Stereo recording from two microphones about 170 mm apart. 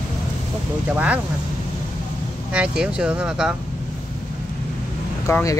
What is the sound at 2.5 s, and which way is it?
Speech, 5° right (ahead or behind).